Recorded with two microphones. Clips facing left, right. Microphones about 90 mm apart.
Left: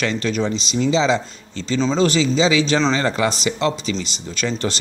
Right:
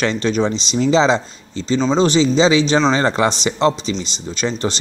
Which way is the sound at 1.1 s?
25° right (ahead or behind).